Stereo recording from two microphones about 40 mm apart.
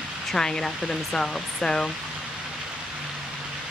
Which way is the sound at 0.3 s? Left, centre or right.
Centre.